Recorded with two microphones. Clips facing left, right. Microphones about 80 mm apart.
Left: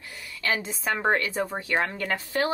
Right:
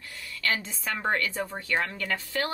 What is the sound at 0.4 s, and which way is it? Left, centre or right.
A woman's voice, centre.